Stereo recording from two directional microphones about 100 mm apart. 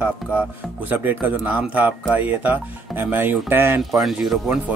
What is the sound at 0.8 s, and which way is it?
Speech, 15° right (ahead or behind).